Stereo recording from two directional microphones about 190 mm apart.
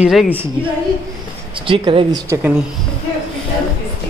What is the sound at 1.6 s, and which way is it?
Speech, 30° right (ahead or behind).